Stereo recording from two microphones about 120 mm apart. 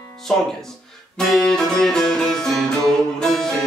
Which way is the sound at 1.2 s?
5° left (ahead or behind).